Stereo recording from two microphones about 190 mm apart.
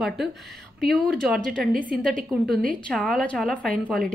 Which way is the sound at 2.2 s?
45° right (ahead or behind).